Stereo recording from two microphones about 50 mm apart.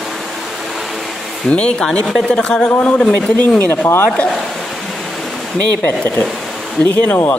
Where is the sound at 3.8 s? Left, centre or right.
Left.